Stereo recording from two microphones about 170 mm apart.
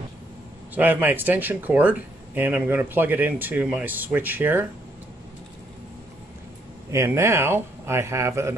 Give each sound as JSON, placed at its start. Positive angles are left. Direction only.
{"t": 0.7, "sound": "speech", "side_deg": -10}
{"t": 6.9, "sound": "speech", "side_deg": -15}